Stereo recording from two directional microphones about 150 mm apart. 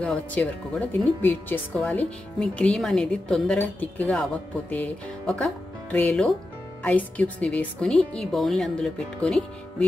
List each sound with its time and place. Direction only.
0.0 s a woman's voice: 10° left (ahead or behind)